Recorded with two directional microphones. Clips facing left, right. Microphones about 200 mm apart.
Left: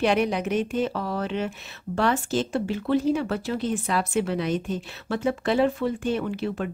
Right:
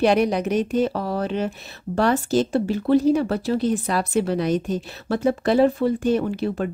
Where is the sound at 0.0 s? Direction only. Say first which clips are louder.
Right 4 dB; 40° right (ahead or behind).